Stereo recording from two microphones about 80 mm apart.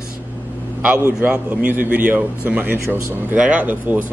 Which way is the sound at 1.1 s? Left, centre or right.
Right.